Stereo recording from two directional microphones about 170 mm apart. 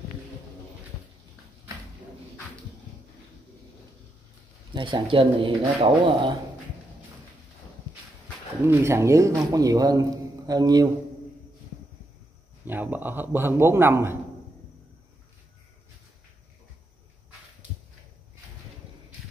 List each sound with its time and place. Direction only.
4.7 s a man's voice: 30° right (ahead or behind)
8.6 s a man's voice: 15° right (ahead or behind)
12.6 s a man's voice: 10° right (ahead or behind)